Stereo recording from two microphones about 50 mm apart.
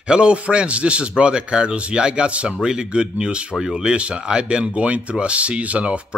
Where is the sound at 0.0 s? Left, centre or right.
Right.